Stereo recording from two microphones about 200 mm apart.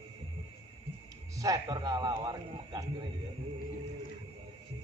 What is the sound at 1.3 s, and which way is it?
A man's voice, 15° right (ahead or behind).